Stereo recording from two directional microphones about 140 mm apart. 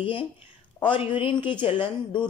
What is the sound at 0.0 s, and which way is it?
Speech, 40° left (ahead or behind).